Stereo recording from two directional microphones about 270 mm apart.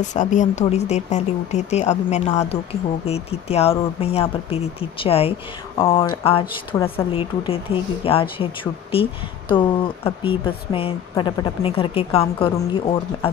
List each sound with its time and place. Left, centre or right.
0.1 s speech: left
6.8 s speech: centre
7.2 s speech: centre